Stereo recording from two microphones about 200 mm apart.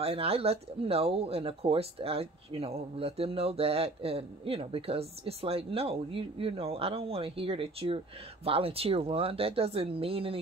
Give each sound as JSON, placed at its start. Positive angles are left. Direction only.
{"t": 0.0, "sound": "speech", "side_deg": -30}